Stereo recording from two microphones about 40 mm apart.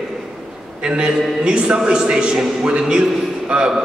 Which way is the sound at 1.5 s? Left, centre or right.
Right.